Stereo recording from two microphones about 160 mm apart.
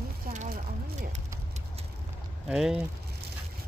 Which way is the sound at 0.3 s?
50° right (ahead or behind).